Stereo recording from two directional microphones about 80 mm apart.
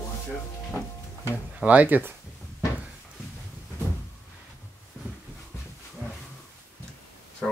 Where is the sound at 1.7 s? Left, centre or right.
Centre.